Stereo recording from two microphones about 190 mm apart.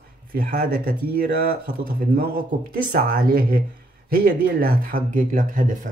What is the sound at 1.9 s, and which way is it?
Speech, 50° right (ahead or behind).